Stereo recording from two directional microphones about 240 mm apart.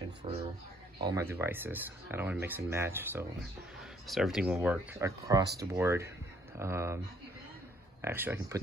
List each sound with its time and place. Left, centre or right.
0.2 s speech: centre
8.0 s speech: centre